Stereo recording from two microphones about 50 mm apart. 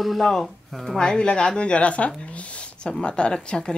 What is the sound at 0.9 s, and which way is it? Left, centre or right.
Speech, centre.